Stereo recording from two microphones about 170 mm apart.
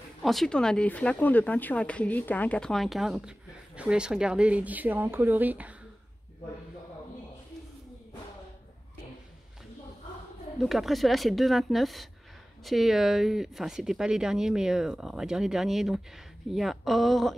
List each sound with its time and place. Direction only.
0.2 s speech: centre (ahead or behind)
10.6 s speech: centre (ahead or behind)